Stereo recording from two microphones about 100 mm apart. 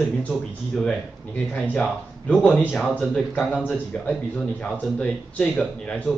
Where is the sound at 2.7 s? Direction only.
10° left (ahead or behind).